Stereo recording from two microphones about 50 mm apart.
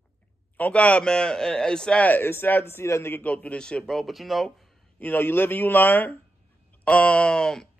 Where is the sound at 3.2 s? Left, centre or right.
Left.